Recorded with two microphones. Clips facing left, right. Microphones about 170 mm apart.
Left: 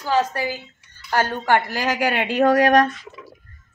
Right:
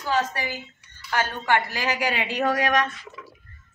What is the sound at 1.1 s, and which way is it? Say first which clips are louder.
Speech: left 4 dB; 40° left (ahead or behind).